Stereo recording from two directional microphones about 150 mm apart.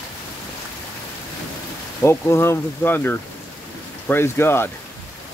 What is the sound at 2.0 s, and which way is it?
Speech, 15° left (ahead or behind).